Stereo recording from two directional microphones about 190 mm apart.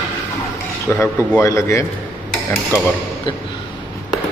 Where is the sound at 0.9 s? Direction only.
10° left (ahead or behind).